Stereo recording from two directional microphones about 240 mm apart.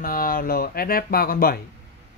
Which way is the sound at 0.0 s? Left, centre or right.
Left.